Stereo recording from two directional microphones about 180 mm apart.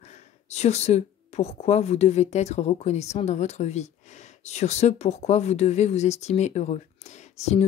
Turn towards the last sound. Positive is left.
turn(degrees=35)  # may be behind; listen again after turning